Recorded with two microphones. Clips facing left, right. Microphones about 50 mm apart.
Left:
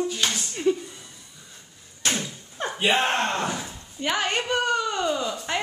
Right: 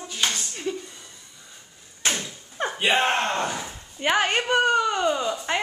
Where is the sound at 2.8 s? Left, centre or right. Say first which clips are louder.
Even; centre.